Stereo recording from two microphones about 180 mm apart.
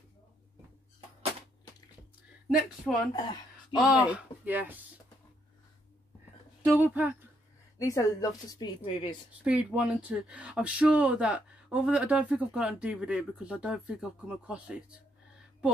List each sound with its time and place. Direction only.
2.4 s speech: centre (ahead or behind)
6.6 s speech: 10° right (ahead or behind)
7.8 s a woman's voice: 20° left (ahead or behind)
9.4 s speech: 5° right (ahead or behind)